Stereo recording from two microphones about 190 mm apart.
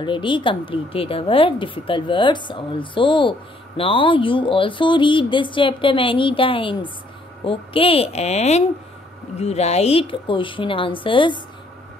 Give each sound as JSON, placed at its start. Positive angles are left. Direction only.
{"t": 0.0, "sound": "a woman's voice", "side_deg": 25}